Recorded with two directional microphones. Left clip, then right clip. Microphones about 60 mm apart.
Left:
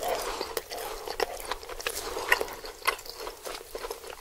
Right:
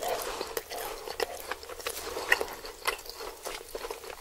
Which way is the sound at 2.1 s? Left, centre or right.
Centre.